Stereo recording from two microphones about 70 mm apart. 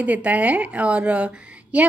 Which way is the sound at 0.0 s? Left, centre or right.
Right.